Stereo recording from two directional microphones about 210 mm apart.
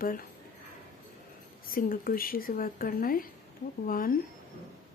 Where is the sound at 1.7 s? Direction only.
45° left (ahead or behind).